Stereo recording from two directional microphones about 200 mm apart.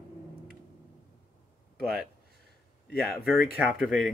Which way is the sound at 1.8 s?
Centre (ahead or behind).